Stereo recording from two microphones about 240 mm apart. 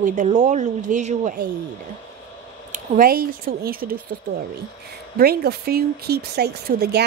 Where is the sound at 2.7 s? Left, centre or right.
Right.